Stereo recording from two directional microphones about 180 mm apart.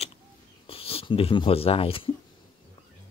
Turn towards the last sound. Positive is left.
turn(degrees=30)  # may be behind; listen again after turning